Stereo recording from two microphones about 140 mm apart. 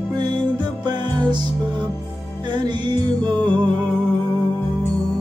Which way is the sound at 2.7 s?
30° right (ahead or behind).